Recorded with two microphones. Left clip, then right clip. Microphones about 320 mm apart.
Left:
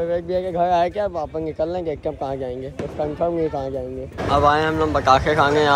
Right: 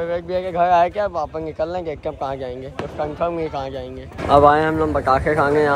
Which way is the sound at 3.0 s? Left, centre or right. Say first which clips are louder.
Left 1 dB; right.